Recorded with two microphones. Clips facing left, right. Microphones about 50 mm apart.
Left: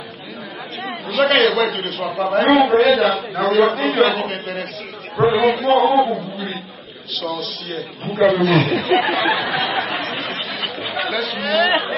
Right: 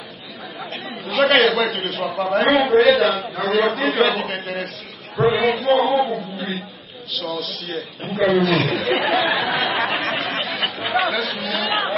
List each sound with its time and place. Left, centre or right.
1.0 s a man's voice: centre
9.9 s chatter: right
10.9 s a man's voice: centre